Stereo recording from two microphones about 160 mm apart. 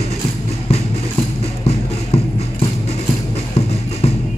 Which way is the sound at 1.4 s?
40° left (ahead or behind).